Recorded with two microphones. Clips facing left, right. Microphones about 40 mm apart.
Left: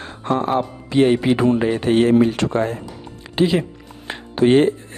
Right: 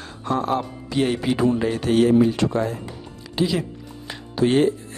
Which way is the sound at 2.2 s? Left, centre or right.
Left.